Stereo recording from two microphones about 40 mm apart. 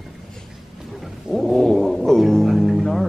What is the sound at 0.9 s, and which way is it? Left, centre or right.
Speech, centre.